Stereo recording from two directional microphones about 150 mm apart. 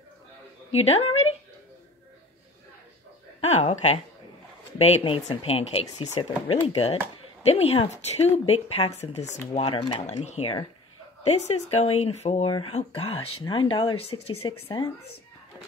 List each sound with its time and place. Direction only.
0.7 s a woman's voice: 40° left (ahead or behind)
3.3 s speech: 45° left (ahead or behind)
9.8 s speech: 30° left (ahead or behind)
10.2 s speech: 45° left (ahead or behind)